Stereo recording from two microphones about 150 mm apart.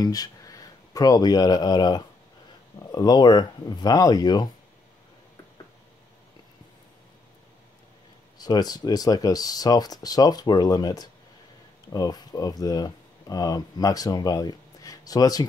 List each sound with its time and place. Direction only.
0.0 s speech: 25° left (ahead or behind)
8.4 s speech: 25° left (ahead or behind)